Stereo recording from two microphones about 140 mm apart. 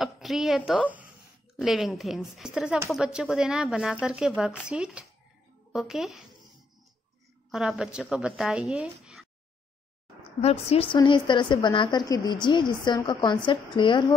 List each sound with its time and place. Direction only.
0.0 s a woman's voice: centre (ahead or behind)
7.5 s speech: 5° right (ahead or behind)
10.4 s a woman's voice: 45° left (ahead or behind)
11.0 s a woman's voice: 35° left (ahead or behind)